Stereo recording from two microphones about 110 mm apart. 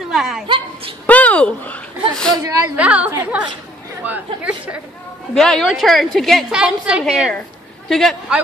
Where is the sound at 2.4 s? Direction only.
30° right (ahead or behind).